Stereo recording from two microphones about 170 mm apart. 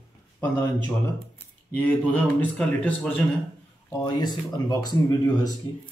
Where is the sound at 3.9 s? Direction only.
20° left (ahead or behind).